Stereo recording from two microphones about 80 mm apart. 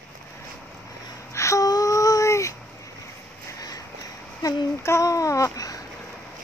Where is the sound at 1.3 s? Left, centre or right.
Left.